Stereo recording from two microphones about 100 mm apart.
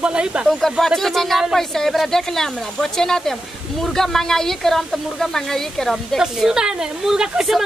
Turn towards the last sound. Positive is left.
turn(degrees=-5)  # may be behind; listen again after turning